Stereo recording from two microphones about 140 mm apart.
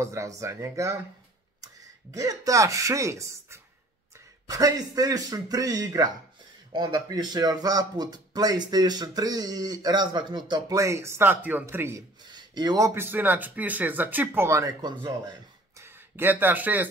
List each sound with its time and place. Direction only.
0.0 s speech: 20° right (ahead or behind)
2.1 s speech: 25° right (ahead or behind)
12.4 s a man's voice: 30° right (ahead or behind)
15.8 s speech: 15° right (ahead or behind)